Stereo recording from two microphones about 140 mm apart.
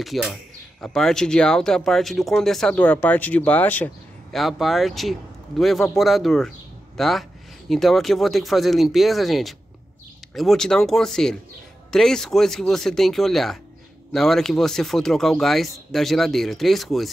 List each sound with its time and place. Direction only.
0.0 s speech: centre (ahead or behind)
4.3 s speech: centre (ahead or behind)